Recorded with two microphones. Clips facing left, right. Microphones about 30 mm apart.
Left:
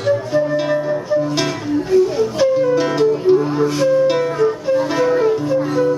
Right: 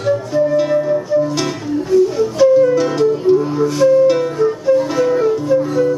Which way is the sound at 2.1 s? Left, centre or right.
Centre.